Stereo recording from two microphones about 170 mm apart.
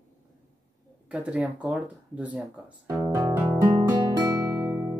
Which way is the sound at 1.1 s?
10° right (ahead or behind).